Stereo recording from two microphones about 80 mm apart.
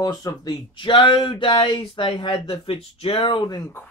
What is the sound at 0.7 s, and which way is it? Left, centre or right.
Speech, left.